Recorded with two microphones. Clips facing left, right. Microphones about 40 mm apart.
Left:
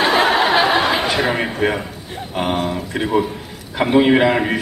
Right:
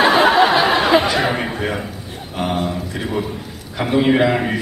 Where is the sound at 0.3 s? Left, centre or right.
Centre.